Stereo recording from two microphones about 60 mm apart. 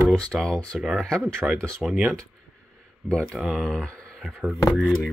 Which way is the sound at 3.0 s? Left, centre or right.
Left.